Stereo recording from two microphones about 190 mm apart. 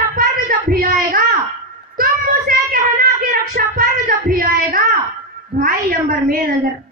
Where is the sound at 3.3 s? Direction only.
45° right (ahead or behind).